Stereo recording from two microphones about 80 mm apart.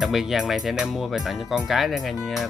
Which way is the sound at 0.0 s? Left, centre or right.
Centre.